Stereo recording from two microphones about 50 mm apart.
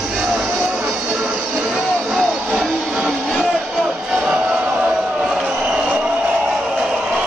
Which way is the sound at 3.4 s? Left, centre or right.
Centre.